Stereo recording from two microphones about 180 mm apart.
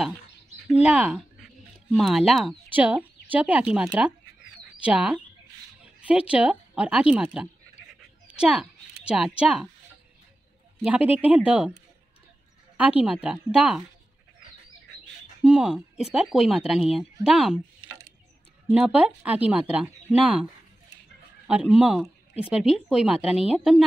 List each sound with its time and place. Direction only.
0.8 s speech: centre (ahead or behind)
8.3 s a sound: 5° right (ahead or behind)
9.0 s speech: 5° right (ahead or behind)
10.8 s speech: 5° right (ahead or behind)
13.0 s speech: 5° right (ahead or behind)
15.4 s speech: 5° right (ahead or behind)
17.8 s a sound: 15° right (ahead or behind)
18.7 s speech: 5° right (ahead or behind)
21.7 s speech: 5° right (ahead or behind)